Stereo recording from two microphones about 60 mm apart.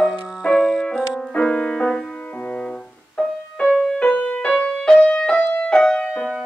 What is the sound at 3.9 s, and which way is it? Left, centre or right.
Music, centre.